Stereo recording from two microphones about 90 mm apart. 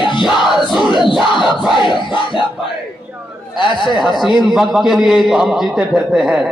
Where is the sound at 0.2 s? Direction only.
5° right (ahead or behind).